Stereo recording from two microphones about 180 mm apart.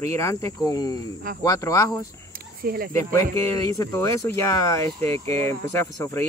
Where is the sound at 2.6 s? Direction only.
55° right (ahead or behind).